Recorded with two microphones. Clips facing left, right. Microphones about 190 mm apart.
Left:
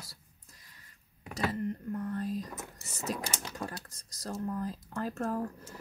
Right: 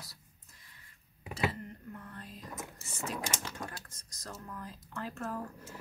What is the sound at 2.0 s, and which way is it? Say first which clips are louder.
Speech: left 13 dB; 40° left (ahead or behind).